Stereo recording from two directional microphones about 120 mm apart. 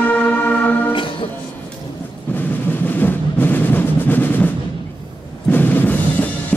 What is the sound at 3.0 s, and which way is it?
Music, 15° left (ahead or behind).